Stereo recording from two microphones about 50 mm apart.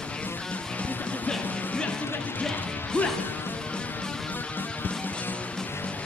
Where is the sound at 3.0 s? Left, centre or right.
Left.